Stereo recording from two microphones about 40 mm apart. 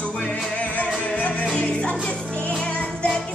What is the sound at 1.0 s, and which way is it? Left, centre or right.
Music, left.